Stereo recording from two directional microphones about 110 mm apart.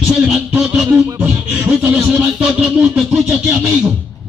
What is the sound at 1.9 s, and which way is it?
Music, 15° right (ahead or behind).